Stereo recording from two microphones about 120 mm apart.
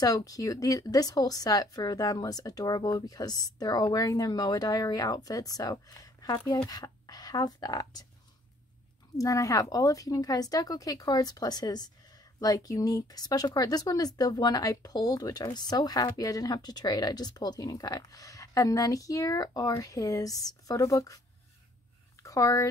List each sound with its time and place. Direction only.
0.0 s a woman's voice: 30° left (ahead or behind)
9.2 s a woman's voice: 30° left (ahead or behind)
22.2 s speech: 30° left (ahead or behind)